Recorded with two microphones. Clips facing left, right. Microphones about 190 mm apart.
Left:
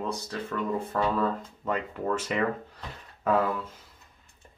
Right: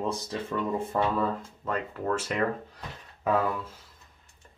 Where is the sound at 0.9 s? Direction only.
15° right (ahead or behind).